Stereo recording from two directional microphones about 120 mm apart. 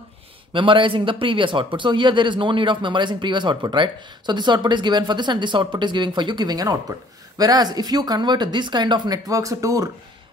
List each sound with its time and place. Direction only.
0.5 s speech: 45° right (ahead or behind); by 9.8 s 30° right (ahead or behind)